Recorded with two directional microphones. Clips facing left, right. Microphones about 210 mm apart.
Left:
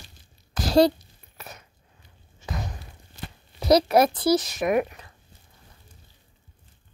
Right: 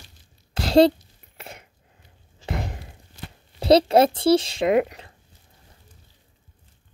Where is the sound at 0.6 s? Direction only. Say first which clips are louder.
Right 3 dB; 25° right (ahead or behind).